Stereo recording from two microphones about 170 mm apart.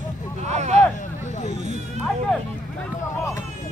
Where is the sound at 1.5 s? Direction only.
40° right (ahead or behind).